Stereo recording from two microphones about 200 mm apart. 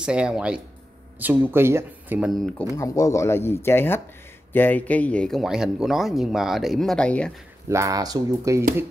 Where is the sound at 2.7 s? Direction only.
15° left (ahead or behind).